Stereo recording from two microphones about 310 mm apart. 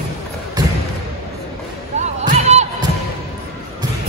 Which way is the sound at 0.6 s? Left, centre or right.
Centre.